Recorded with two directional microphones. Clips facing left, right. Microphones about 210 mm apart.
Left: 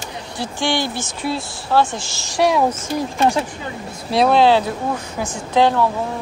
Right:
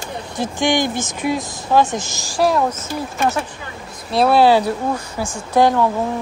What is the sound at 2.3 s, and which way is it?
Speech, centre (ahead or behind).